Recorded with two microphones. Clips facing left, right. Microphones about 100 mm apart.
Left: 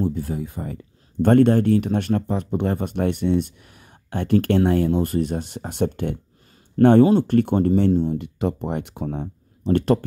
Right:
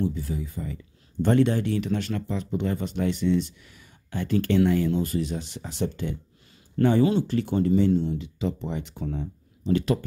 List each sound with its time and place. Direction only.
0.0 s speech: 50° left (ahead or behind)